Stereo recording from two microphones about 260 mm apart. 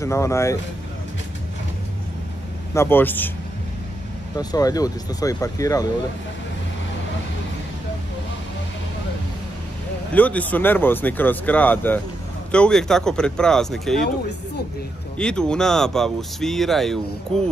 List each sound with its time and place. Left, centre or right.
0.0 s speech: centre
2.7 s speech: centre
4.4 s speech: centre
10.1 s speech: centre
15.1 s speech: centre